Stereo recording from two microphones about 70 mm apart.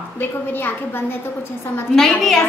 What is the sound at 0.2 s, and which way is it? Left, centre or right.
Speech, left.